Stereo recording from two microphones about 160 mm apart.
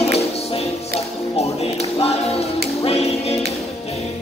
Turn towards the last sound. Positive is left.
turn(degrees=40)  # may be behind; listen again after turning